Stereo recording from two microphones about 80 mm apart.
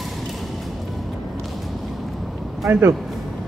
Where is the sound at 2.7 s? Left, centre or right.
Right.